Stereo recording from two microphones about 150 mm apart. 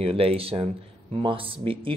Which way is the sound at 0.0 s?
40° right (ahead or behind).